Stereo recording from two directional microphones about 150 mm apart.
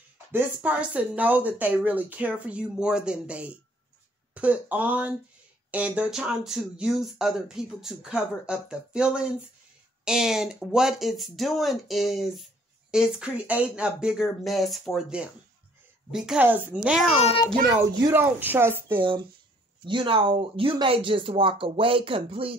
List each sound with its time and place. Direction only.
0.3 s speech: 10° right (ahead or behind)
18.1 s speech: 15° right (ahead or behind)
18.9 s speech: 35° right (ahead or behind)